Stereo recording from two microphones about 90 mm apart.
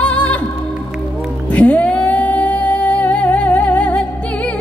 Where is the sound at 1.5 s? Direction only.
15° left (ahead or behind).